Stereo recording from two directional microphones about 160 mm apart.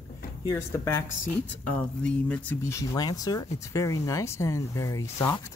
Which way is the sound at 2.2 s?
10° left (ahead or behind).